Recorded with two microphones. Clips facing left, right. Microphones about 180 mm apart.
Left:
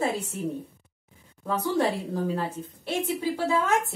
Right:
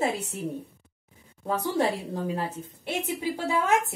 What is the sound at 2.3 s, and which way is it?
A woman's voice, 20° right (ahead or behind).